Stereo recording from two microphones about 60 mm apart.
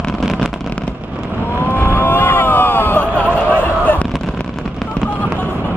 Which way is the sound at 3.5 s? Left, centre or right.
Left.